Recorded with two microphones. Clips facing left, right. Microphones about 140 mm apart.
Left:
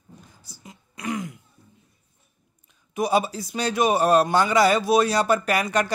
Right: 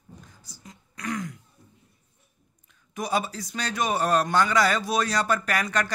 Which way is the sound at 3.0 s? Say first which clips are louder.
Left 5 dB; 10° left (ahead or behind).